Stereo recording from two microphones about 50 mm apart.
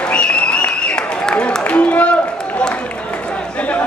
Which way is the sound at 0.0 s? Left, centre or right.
Left.